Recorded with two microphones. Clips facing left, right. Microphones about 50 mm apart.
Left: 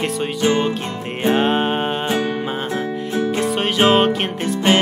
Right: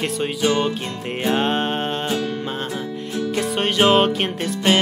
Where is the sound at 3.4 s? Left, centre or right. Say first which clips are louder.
Even; centre.